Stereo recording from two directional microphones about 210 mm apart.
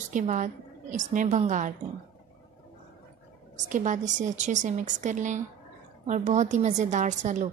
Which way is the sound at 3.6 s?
35° right (ahead or behind).